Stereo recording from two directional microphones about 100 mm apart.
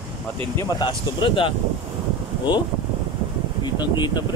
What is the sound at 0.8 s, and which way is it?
Speech, 55° left (ahead or behind).